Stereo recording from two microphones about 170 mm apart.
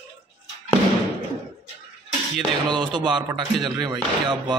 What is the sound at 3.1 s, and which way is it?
Speech, 25° right (ahead or behind).